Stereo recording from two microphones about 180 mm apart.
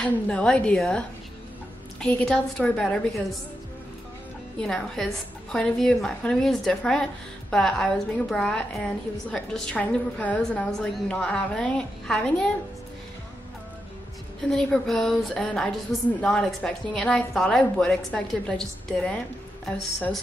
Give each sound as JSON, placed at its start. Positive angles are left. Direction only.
{"t": 0.0, "sound": "a woman's voice", "side_deg": 5}
{"t": 4.6, "sound": "a woman's voice", "side_deg": 5}
{"t": 14.5, "sound": "a woman's voice", "side_deg": 0}